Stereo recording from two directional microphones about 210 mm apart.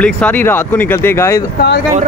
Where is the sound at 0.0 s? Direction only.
5° left (ahead or behind).